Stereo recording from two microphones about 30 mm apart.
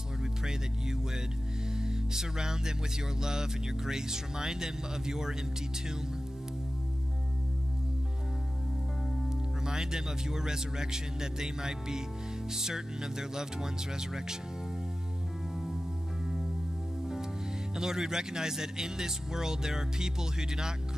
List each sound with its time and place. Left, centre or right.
0.2 s speech: centre
1.7 s music: centre
3.2 s speech: centre
9.7 s speech: centre
17.7 s speech: centre